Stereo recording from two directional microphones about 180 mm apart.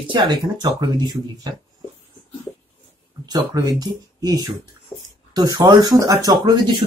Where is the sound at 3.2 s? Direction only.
20° right (ahead or behind).